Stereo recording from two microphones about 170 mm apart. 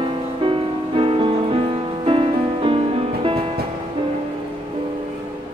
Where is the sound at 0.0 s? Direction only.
30° right (ahead or behind).